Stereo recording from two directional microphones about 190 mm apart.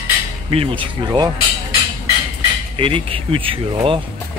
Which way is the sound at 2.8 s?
30° right (ahead or behind).